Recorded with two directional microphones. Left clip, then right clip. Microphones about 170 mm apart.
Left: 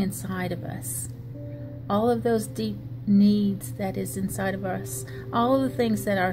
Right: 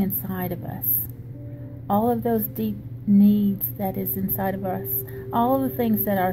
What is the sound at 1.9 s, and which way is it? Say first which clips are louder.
A woman's voice: right 1 dB; 20° left (ahead or behind).